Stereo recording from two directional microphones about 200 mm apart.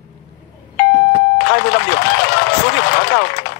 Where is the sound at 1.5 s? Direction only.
55° left (ahead or behind).